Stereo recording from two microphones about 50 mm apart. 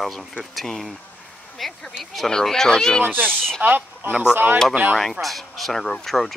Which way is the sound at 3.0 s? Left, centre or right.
Right.